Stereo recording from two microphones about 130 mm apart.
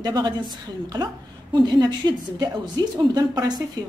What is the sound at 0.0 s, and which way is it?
A woman's voice, 30° right (ahead or behind).